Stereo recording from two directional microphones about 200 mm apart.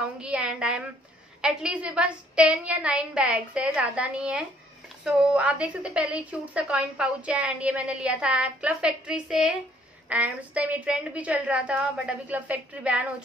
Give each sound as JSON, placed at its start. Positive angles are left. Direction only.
{"t": 0.2, "sound": "a woman's voice", "side_deg": -5}